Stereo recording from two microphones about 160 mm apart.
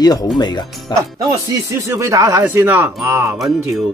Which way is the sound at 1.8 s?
20° right (ahead or behind).